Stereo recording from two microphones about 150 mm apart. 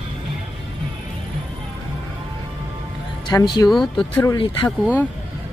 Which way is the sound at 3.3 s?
25° left (ahead or behind).